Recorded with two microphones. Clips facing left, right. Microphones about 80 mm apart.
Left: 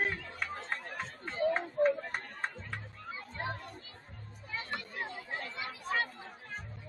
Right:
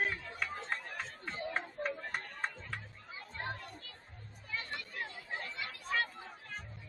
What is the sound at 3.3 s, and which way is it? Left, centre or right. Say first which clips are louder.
Children playing: left 2 dB; centre.